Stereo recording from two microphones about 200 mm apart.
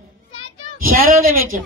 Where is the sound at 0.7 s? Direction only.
45° right (ahead or behind).